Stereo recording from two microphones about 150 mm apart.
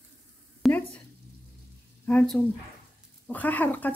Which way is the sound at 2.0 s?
10° left (ahead or behind).